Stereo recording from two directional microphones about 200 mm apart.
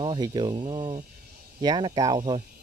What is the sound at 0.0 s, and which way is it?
Speech, 25° right (ahead or behind).